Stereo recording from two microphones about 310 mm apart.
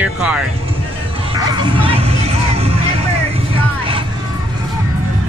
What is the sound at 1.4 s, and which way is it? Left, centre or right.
Music, centre.